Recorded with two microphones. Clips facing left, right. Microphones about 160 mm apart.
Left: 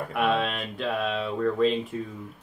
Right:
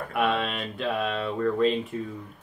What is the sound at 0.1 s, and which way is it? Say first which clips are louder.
Speech: even; centre (ahead or behind).